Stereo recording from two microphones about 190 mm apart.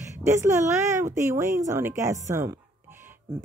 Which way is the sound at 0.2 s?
15° right (ahead or behind).